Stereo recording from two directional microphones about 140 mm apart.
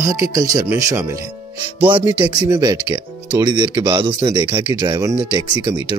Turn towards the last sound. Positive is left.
turn(degrees=-30)  # may be behind; listen again after turning